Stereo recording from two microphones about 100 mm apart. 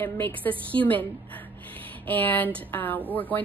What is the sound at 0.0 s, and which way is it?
A woman's voice, 15° left (ahead or behind).